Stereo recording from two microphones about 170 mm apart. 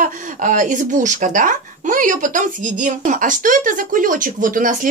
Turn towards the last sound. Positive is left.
turn(degrees=-50)  # may be behind; listen again after turning